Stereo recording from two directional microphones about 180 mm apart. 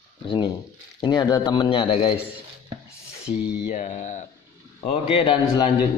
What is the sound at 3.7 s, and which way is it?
Speech, 40° left (ahead or behind).